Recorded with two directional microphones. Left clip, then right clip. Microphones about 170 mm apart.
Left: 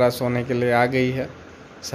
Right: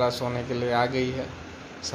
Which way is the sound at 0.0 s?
60° left (ahead or behind).